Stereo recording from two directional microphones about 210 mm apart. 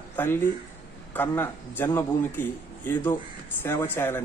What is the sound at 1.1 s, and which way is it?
A man's voice, 10° left (ahead or behind).